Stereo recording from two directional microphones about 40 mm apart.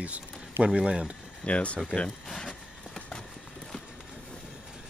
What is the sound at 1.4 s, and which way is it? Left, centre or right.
Speech, left.